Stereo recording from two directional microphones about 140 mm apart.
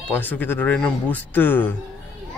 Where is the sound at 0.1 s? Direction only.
15° left (ahead or behind).